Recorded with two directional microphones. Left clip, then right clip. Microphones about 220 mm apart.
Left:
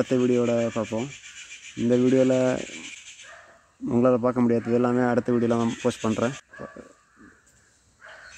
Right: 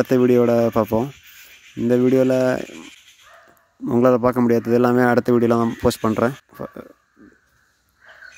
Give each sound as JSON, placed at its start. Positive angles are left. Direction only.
{"t": 0.0, "sound": "rub", "side_deg": -20}
{"t": 1.8, "sound": "a man's voice", "side_deg": -15}
{"t": 3.8, "sound": "a man's voice", "side_deg": -15}